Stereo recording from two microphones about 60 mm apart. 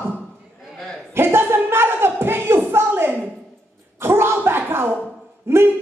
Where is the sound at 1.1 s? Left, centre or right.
Right.